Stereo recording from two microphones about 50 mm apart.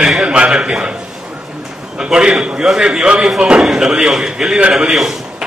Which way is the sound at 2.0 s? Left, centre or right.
Centre.